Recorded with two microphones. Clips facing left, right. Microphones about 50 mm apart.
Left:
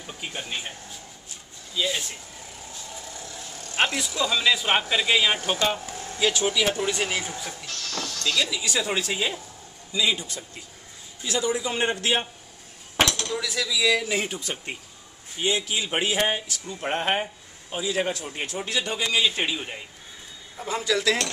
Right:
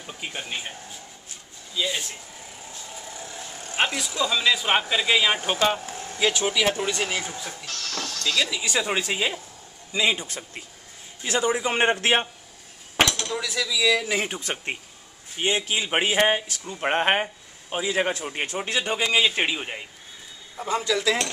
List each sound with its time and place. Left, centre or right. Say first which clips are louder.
0.0 s speech: right 1 dB; centre
1.8 s speech: even; centre
3.1 s vehicle: right 2 dB; right
3.7 s vehicle: even; centre
4.2 s speech: even; centre
5.4 s speech: right 2 dB; right
6.9 s speech: even; centre
8.2 s speech: right 1 dB; right
9.9 s a man's voice: right 1 dB; right
12.9 s a sound: right 1 dB; centre
14.0 s speech: right 1 dB; right
14.4 s a man's voice: right 3 dB; right
20.6 s speech: right 1 dB; centre
21.0 s speech: even; centre